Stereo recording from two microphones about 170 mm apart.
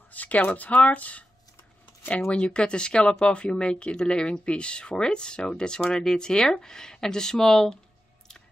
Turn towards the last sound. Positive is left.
turn(degrees=0)  # may be behind; listen again after turning